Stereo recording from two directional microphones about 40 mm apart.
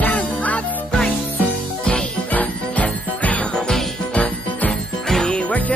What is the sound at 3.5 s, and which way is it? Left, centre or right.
Music, centre.